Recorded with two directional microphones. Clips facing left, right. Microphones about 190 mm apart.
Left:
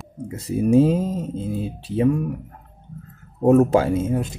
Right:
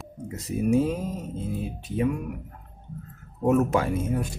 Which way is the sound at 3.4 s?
30° left (ahead or behind).